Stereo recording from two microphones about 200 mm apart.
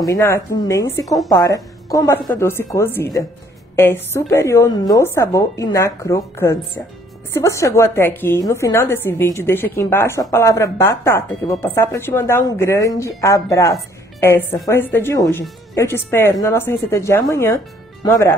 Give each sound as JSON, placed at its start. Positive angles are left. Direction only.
{"t": 0.0, "sound": "a woman's voice", "side_deg": 15}
{"t": 1.0, "sound": "a woman's voice", "side_deg": 0}
{"t": 1.4, "sound": "a woman's voice", "side_deg": 15}